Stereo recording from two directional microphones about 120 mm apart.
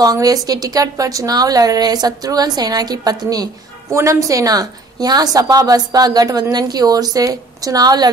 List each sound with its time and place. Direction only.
0.0 s a woman's voice: 30° right (ahead or behind)